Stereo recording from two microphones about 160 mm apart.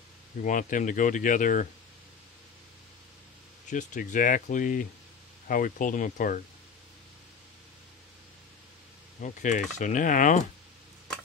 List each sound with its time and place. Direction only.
0.4 s speech: 55° left (ahead or behind)
3.7 s speech: 55° left (ahead or behind)
9.2 s speech: 50° left (ahead or behind)